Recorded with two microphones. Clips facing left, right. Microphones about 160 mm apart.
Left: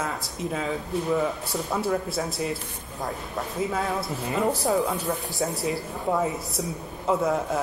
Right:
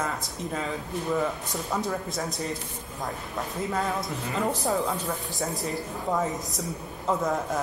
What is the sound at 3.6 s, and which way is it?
Speech, 5° left (ahead or behind).